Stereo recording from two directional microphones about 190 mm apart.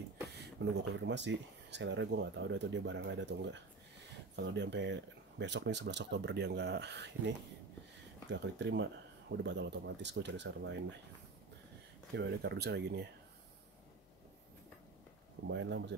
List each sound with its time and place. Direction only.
0.3 s speech: 65° right (ahead or behind)
12.2 s speech: 60° right (ahead or behind)
15.4 s speech: 70° right (ahead or behind)